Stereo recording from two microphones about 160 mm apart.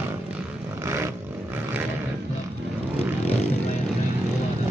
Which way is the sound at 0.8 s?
15° right (ahead or behind).